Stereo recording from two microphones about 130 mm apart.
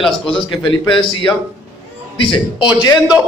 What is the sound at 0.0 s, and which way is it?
Speech, 5° left (ahead or behind).